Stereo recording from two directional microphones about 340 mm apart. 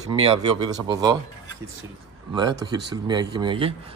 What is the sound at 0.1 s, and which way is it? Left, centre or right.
Speech, centre.